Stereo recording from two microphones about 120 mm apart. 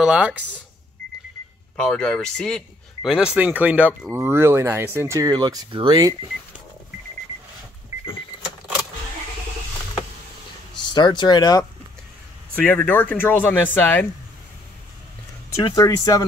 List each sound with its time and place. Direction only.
0.0 s speech: 5° right (ahead or behind)
1.8 s speech: 5° left (ahead or behind)
3.1 s speech: 10° right (ahead or behind); by 5.3 s 25° right (ahead or behind)
5.3 s speech: 35° right (ahead or behind)
10.9 s speech: 40° left (ahead or behind)
12.6 s speech: 15° left (ahead or behind)
15.6 s speech: 30° left (ahead or behind)